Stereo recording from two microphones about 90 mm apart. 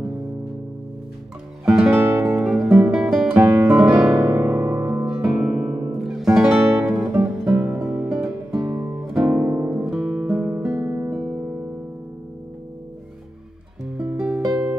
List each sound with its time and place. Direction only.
1.7 s music: 10° right (ahead or behind)
2.0 s music: 25° right (ahead or behind)
2.4 s guitar: 5° right (ahead or behind)
3.3 s music: 35° right (ahead or behind)
3.6 s music: 10° right (ahead or behind)
4.1 s music: 20° right (ahead or behind)
7.5 s music: 20° right (ahead or behind)
7.8 s music: 10° right (ahead or behind)
13.9 s music: 10° right (ahead or behind)